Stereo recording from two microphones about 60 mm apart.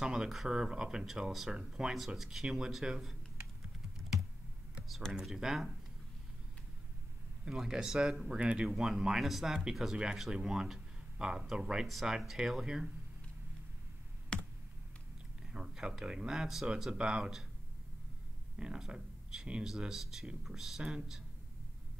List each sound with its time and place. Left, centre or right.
0.0 s speech: centre
5.2 s speech: centre
7.4 s speech: centre
14.3 s computer keyboard: centre
15.4 s speech: centre
18.6 s speech: centre